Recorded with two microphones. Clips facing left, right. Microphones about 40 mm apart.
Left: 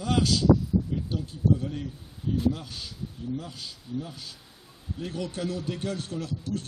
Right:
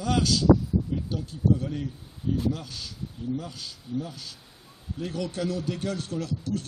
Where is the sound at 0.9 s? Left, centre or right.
Centre.